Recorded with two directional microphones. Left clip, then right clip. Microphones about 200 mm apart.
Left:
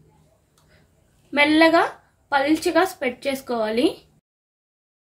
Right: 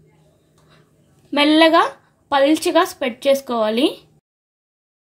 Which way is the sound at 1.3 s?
35° right (ahead or behind).